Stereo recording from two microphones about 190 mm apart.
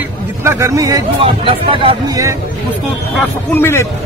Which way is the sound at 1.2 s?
30° right (ahead or behind).